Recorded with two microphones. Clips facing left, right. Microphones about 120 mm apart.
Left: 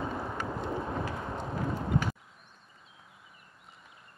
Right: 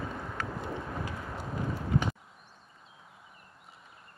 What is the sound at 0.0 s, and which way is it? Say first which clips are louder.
Vehicle: left 3 dB; 25° left (ahead or behind).